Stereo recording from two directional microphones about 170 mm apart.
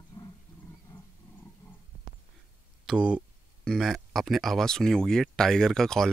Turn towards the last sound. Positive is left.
turn(degrees=0)  # may be behind; listen again after turning